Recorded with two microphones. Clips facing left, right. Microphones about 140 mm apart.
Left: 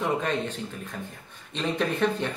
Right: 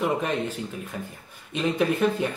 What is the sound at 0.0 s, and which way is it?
Speech, 10° right (ahead or behind).